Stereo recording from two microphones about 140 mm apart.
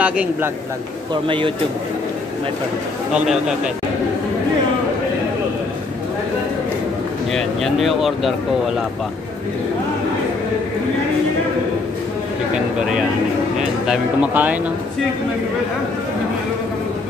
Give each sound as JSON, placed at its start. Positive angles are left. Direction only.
{"t": 0.0, "sound": "speech", "side_deg": -10}
{"t": 1.2, "sound": "speech", "side_deg": -40}
{"t": 3.1, "sound": "speech", "side_deg": -5}
{"t": 7.3, "sound": "speech", "side_deg": 0}
{"t": 13.6, "sound": "speech", "side_deg": -5}